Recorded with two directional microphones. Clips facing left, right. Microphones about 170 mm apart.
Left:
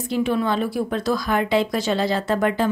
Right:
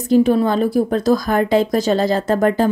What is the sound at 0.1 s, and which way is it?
A woman's voice, 40° right (ahead or behind).